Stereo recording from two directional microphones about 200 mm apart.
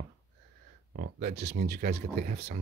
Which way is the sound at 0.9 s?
55° right (ahead or behind).